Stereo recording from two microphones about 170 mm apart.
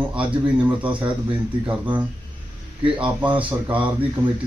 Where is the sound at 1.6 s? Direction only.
10° right (ahead or behind).